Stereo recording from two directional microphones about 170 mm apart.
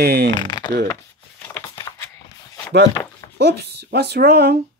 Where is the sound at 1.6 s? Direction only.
20° left (ahead or behind).